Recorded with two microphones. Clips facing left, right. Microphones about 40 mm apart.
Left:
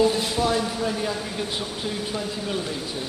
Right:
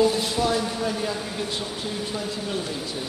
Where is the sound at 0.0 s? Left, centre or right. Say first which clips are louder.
Even; centre.